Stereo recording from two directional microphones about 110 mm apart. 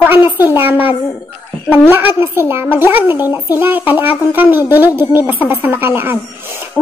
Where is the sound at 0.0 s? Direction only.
20° right (ahead or behind).